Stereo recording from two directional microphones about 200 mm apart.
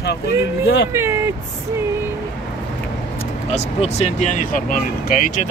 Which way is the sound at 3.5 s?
35° left (ahead or behind).